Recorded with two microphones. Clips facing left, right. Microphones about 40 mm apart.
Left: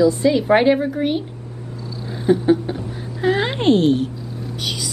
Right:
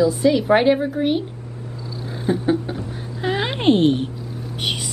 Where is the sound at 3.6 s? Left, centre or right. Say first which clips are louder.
Even; right.